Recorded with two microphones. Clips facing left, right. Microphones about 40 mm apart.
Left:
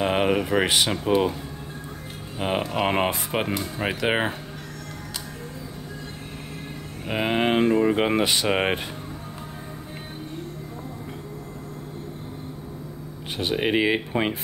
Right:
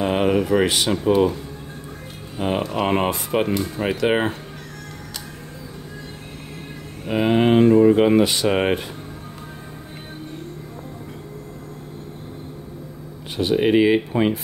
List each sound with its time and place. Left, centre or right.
0.0 s speech: centre
2.3 s speech: centre
7.1 s speech: centre
13.4 s speech: left